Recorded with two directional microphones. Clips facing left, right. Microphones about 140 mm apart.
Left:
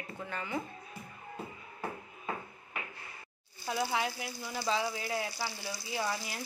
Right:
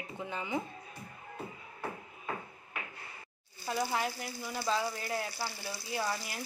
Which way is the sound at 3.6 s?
Centre (ahead or behind).